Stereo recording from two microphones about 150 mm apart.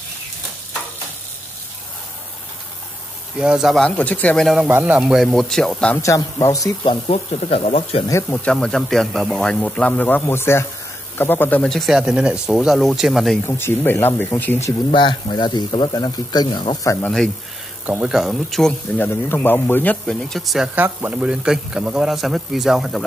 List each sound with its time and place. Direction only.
3.3 s a man's voice: 5° right (ahead or behind)
4.6 s a man's voice: 10° right (ahead or behind)
6.0 s speech: 20° left (ahead or behind)
7.1 s speech: 45° left (ahead or behind)
8.1 s a man's voice: 15° left (ahead or behind); by 13.4 s centre (ahead or behind)
13.4 s a man's voice: 15° left (ahead or behind)
14.9 s speech: 35° left (ahead or behind)
17.8 s a man's voice: 10° right (ahead or behind)